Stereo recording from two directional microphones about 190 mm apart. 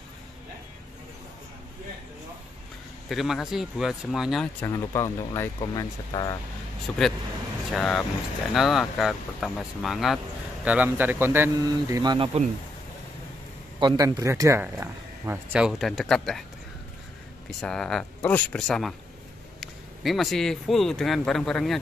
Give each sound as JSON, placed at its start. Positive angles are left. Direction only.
{"t": 3.1, "sound": "speech", "side_deg": 0}
{"t": 4.6, "sound": "speech", "side_deg": 15}
{"t": 6.9, "sound": "speech", "side_deg": 5}
{"t": 13.7, "sound": "speech", "side_deg": -20}
{"t": 17.5, "sound": "a man's voice", "side_deg": 0}